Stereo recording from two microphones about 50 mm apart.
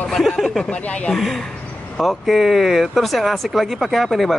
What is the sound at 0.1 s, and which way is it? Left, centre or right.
Speech, centre.